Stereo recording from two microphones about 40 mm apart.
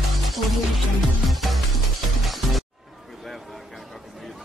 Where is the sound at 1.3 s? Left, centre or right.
Centre.